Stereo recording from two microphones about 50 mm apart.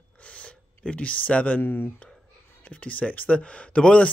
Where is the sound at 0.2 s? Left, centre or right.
Left.